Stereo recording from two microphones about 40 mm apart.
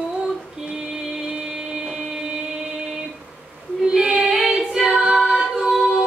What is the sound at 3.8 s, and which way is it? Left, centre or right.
Female singing, centre.